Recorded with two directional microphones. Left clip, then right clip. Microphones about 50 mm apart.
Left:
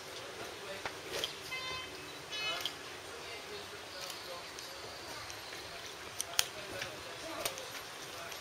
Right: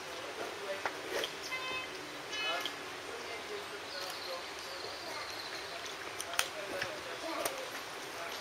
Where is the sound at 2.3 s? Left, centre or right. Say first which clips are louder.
Right 1 dB; left.